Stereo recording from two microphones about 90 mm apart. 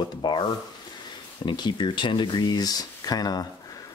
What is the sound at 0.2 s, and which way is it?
Rub, 60° left (ahead or behind).